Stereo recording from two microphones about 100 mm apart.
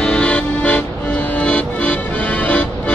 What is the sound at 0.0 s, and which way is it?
Music, 10° left (ahead or behind).